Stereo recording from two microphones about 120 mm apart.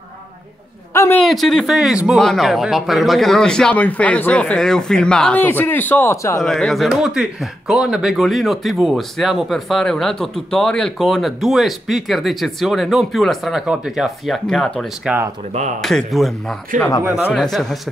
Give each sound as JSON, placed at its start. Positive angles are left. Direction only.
{"t": 0.9, "sound": "a man's voice", "side_deg": 20}
{"t": 1.2, "sound": "speech", "side_deg": 0}
{"t": 6.4, "sound": "speech", "side_deg": 0}